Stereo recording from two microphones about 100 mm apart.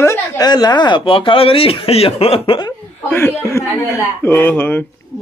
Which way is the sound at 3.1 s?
20° left (ahead or behind).